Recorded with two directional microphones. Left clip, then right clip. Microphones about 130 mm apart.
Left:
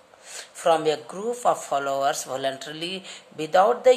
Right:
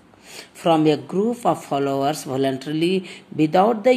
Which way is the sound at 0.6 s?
15° right (ahead or behind).